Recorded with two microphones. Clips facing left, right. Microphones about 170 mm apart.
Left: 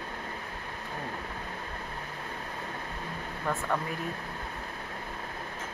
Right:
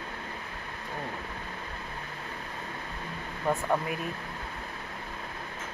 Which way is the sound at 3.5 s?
10° right (ahead or behind).